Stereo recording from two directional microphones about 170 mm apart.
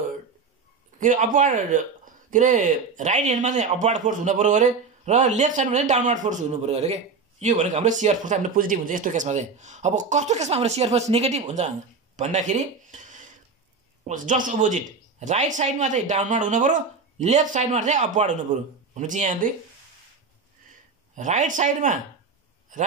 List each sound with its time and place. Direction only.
0.9 s speech: 50° right (ahead or behind)
21.1 s speech: 45° right (ahead or behind)